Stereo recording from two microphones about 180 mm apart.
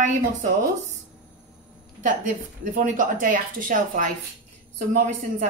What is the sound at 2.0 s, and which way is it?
Speech, 50° right (ahead or behind).